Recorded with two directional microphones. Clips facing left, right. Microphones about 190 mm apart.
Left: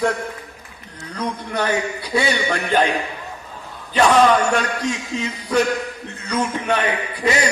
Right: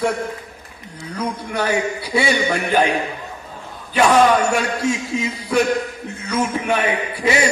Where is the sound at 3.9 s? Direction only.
10° right (ahead or behind).